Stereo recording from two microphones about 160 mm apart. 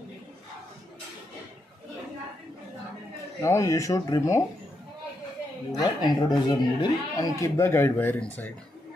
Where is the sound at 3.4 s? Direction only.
20° left (ahead or behind).